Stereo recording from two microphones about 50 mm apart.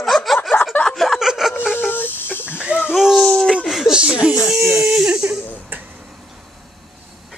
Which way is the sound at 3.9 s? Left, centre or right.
Centre.